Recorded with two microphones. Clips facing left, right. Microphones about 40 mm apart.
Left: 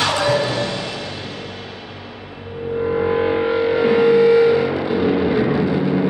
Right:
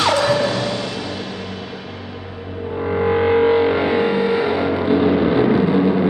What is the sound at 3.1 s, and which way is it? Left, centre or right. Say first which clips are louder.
Music: right 7 dB; centre.